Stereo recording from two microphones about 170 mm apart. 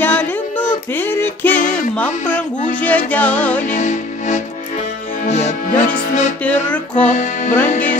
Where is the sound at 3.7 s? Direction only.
45° left (ahead or behind).